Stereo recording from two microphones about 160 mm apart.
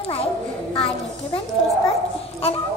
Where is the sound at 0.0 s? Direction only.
40° left (ahead or behind).